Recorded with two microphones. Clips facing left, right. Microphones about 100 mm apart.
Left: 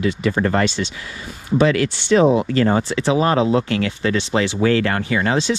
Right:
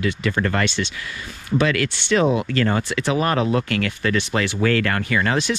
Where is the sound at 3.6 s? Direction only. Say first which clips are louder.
Left 2 dB; 20° left (ahead or behind).